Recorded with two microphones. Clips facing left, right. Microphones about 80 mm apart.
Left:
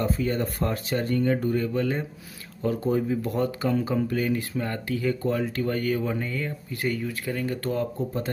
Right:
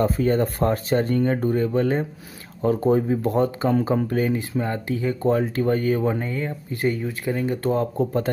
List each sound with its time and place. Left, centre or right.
0.0 s speech: right
8.0 s speech: right